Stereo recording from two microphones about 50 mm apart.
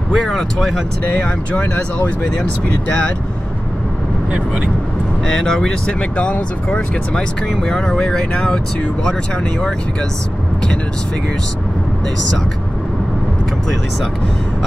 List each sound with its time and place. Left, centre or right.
0.1 s speech: centre
1.1 s speech: left
5.2 s speech: centre
5.9 s speech: left